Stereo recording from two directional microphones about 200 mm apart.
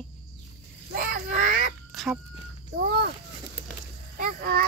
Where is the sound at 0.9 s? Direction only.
45° right (ahead or behind).